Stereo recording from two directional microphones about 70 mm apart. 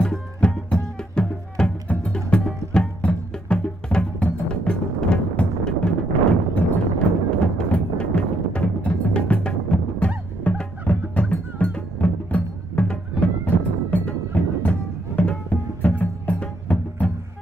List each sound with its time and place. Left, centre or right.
0.4 s music: centre